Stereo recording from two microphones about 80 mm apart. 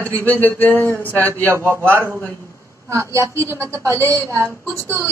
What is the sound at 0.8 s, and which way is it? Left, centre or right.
A woman's voice, right.